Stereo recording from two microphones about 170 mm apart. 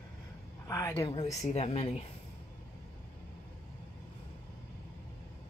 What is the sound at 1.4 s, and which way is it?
Speech, 40° left (ahead or behind).